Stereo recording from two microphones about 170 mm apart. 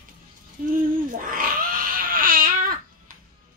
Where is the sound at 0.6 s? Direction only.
55° right (ahead or behind).